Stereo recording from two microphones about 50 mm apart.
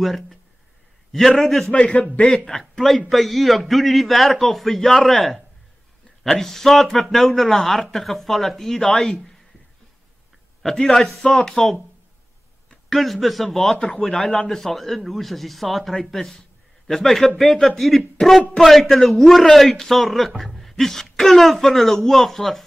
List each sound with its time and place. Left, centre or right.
0.0 s speech: centre
1.7 s a man's voice: left
2.2 s a man's voice: centre
10.6 s speech: centre
13.7 s a man's voice: centre